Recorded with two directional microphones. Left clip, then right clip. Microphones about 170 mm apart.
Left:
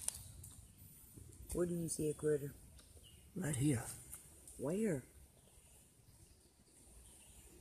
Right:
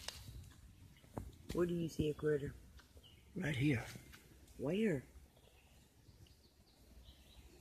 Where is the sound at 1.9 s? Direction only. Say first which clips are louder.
Left 1 dB; 35° right (ahead or behind).